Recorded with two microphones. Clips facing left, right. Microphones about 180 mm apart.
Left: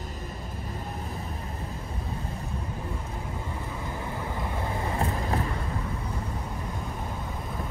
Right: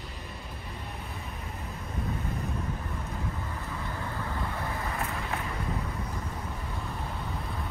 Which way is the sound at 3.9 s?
20° left (ahead or behind).